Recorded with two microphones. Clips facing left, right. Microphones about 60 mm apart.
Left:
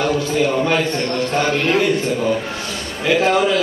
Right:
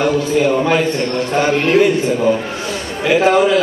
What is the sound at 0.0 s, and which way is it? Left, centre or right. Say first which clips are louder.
A man's voice: right 3 dB; centre.